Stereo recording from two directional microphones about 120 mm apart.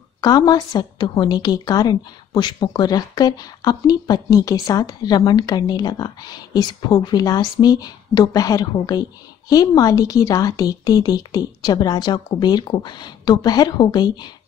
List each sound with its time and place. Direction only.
0.2 s speech: 35° left (ahead or behind)